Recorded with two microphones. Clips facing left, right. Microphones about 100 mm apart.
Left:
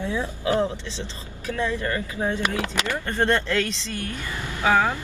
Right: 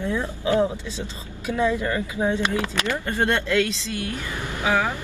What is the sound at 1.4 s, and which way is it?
Speech, 15° right (ahead or behind).